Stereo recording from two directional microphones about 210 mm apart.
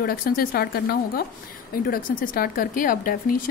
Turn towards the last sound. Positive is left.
turn(degrees=40)  # may be behind; listen again after turning